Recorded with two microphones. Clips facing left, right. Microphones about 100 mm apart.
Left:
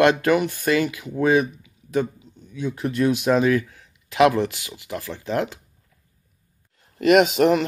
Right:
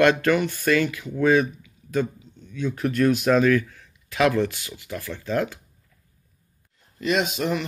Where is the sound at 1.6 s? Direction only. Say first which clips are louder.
Left 1 dB; 20° left (ahead or behind).